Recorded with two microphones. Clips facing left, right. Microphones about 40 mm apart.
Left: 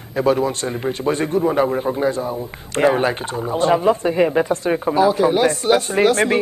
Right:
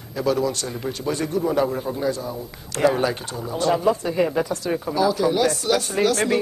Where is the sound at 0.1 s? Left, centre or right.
Left.